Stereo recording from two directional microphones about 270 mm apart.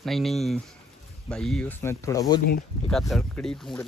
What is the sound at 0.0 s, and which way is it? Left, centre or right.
Speech, centre.